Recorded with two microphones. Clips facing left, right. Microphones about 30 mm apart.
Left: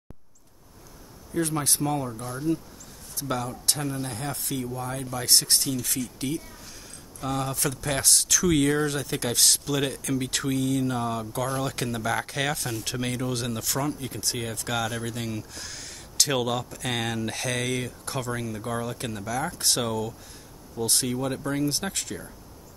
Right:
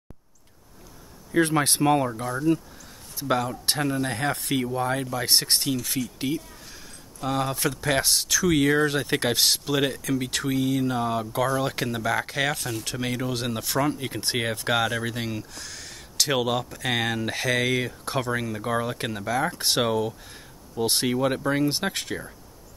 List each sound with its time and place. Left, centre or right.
1.3 s speech: right
3.3 s speech: right
4.1 s speech: right
4.7 s speech: right
5.2 s speech: right
8.7 s speech: right
9.5 s speech: centre
13.8 s speech: right
14.9 s speech: right
15.5 s speech: centre; by 22.3 s right